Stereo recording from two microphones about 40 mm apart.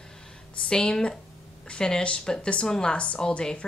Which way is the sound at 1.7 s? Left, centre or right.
Left.